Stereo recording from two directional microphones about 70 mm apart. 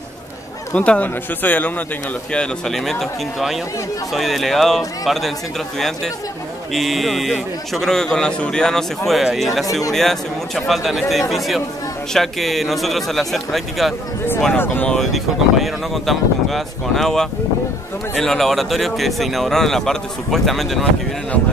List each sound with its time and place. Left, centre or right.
0.7 s speech: centre
2.3 s speech: centre
6.7 s speech: centre
14.6 s speech: left
14.9 s speech: centre